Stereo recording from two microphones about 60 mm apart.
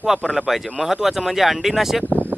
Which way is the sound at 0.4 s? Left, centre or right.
Centre.